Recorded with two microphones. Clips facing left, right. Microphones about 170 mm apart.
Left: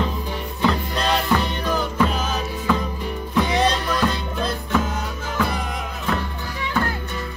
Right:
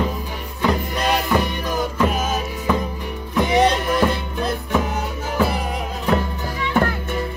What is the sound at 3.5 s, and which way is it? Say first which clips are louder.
Music: right 4 dB; 20° right (ahead or behind).